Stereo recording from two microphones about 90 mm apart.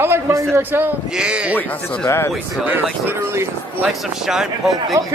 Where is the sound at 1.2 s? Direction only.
10° right (ahead or behind).